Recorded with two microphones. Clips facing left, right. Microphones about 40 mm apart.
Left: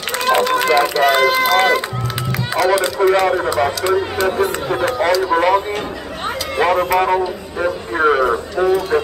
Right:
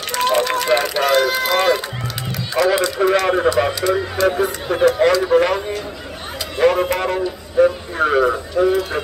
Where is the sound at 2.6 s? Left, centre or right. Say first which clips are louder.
Even; left.